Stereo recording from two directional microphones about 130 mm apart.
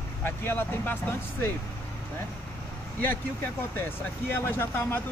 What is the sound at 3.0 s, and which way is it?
Speech, 15° left (ahead or behind).